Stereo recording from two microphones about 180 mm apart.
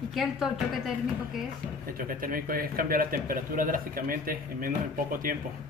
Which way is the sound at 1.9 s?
50° right (ahead or behind).